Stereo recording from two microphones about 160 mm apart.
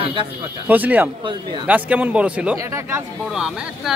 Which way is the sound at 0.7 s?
10° right (ahead or behind).